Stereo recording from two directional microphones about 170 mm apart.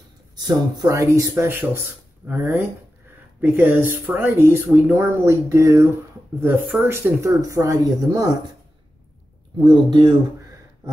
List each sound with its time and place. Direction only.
0.4 s speech: 25° right (ahead or behind)
9.7 s speech: 25° right (ahead or behind)